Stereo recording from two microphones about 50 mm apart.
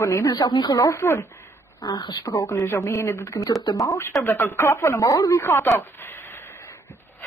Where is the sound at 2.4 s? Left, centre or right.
Left.